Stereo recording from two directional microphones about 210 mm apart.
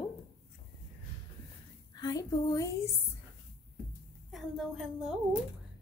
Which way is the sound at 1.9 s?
20° left (ahead or behind).